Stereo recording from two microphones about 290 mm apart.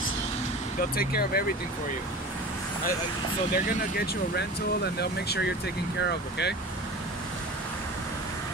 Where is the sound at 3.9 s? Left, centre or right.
Left.